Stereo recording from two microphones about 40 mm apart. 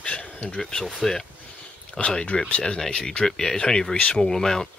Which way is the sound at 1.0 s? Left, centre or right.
Centre.